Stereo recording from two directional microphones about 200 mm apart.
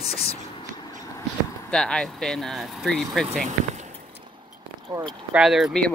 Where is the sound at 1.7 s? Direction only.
5° left (ahead or behind).